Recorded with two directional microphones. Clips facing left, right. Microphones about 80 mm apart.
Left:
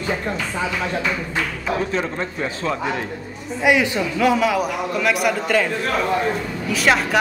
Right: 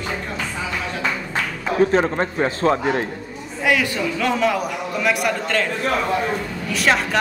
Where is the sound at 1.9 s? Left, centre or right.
Right.